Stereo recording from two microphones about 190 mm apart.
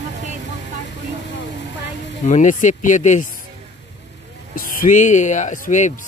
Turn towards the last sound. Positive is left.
turn(degrees=40)  # may be behind; listen again after turning